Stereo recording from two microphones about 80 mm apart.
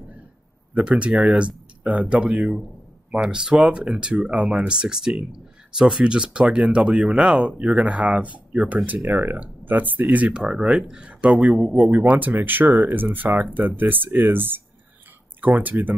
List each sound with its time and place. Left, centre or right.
0.7 s speech: centre